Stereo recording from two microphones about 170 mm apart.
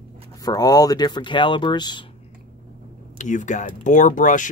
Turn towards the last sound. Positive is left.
turn(degrees=50)  # may be behind; listen again after turning